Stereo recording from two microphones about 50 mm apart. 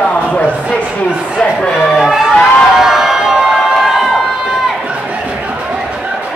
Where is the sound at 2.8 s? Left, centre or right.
Centre.